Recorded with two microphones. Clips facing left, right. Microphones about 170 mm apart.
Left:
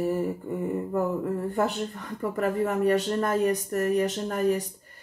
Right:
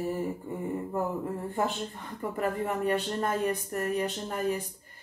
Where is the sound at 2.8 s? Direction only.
45° left (ahead or behind).